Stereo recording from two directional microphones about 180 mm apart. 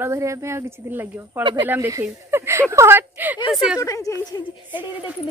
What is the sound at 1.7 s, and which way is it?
Speech, 15° right (ahead or behind).